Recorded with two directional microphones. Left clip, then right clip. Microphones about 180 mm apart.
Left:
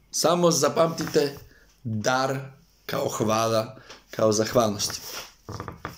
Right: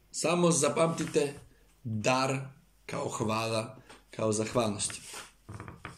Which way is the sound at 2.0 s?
15° right (ahead or behind).